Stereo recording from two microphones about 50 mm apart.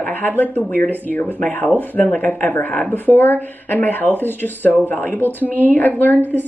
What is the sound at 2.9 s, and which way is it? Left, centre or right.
A woman's voice, left.